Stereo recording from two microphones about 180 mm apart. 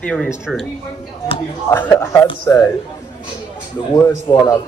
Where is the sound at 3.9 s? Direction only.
20° left (ahead or behind).